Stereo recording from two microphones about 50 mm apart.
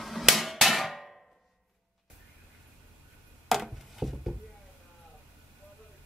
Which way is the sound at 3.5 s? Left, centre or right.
Centre.